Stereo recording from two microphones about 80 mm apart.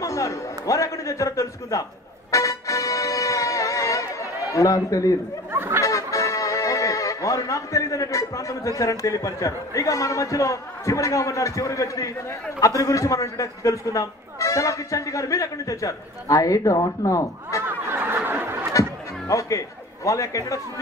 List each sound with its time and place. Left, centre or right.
0.0 s music: left
5.5 s chatter: right
5.9 s speech: left
18.0 s a sound: right
18.7 s speech: left